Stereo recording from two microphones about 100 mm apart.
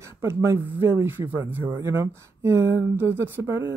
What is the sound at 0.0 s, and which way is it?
Speech, 25° right (ahead or behind).